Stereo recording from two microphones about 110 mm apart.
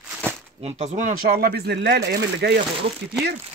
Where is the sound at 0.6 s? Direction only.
85° right.